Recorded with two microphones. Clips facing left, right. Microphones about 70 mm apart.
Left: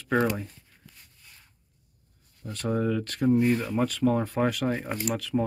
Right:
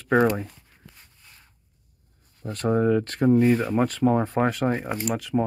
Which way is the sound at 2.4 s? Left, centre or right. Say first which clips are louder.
Right 6 dB; right.